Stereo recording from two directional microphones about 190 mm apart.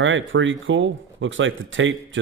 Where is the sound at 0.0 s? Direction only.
85° right.